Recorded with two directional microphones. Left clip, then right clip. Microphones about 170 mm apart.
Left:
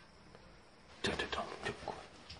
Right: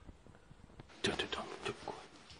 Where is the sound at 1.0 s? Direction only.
40° right (ahead or behind).